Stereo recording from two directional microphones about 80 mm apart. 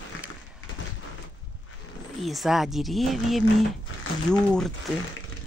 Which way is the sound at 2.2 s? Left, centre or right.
Centre.